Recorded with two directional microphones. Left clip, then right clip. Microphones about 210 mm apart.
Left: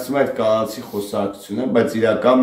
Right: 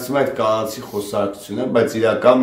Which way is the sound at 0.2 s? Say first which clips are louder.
Even; 15° right (ahead or behind).